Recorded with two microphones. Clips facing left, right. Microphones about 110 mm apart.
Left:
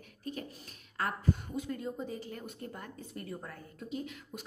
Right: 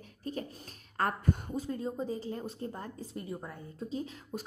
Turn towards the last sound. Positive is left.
turn(degrees=-35)  # may be behind; listen again after turning